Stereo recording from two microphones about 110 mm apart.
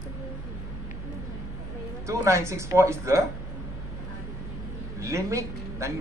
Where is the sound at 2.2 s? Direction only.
25° right (ahead or behind).